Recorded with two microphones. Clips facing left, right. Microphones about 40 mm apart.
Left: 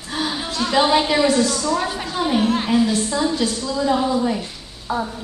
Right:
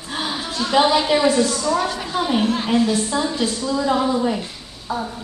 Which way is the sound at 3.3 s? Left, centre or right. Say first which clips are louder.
Even; right.